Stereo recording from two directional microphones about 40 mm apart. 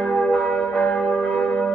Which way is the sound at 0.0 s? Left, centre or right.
Left.